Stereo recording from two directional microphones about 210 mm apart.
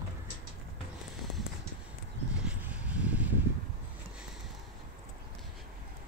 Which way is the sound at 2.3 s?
5° right (ahead or behind).